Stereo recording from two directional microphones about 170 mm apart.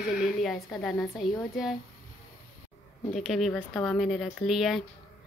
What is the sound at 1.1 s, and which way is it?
Speech, centre (ahead or behind).